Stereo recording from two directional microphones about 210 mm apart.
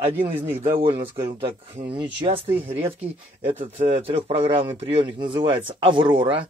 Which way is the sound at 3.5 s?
30° right (ahead or behind).